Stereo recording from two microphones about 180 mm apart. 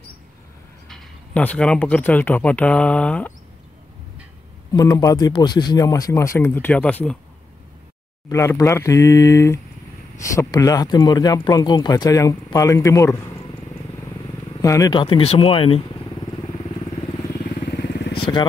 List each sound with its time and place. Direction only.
0.8 s speech: 5° left (ahead or behind)
4.7 s a man's voice: 20° left (ahead or behind)
8.3 s a man's voice: 15° left (ahead or behind)
14.6 s speech: 20° left (ahead or behind)
17.6 s vehicle: 65° left (ahead or behind)
18.1 s vehicle: 30° left (ahead or behind)